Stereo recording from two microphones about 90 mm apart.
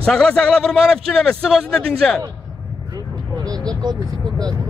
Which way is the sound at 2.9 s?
45° right (ahead or behind).